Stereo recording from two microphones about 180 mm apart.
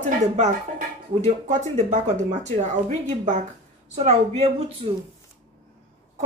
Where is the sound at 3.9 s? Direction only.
35° right (ahead or behind).